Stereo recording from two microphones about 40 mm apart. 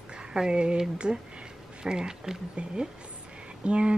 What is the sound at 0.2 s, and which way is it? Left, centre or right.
Speech, centre.